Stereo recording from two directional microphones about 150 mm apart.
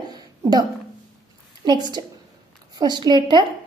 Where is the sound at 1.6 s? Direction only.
30° right (ahead or behind).